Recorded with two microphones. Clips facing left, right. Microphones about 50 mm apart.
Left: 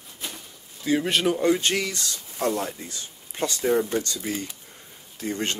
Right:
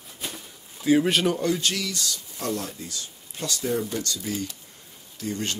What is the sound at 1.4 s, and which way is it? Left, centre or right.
Speech, left.